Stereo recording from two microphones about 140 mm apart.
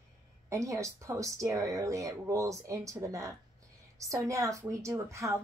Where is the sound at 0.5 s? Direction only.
20° right (ahead or behind).